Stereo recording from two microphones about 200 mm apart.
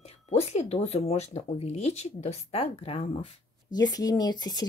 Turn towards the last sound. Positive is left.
turn(degrees=20)  # may be behind; listen again after turning